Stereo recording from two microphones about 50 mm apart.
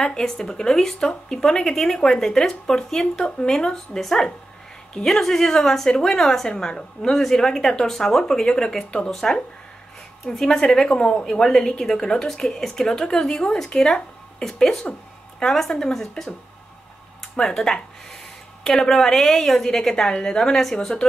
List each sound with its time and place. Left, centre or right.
0.0 s speech: centre
10.2 s speech: centre
17.4 s speech: centre